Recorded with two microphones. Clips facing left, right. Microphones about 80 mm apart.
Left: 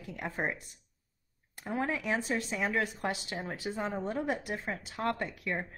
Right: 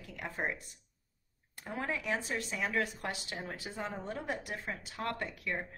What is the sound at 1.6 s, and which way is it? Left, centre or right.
A woman's voice, left.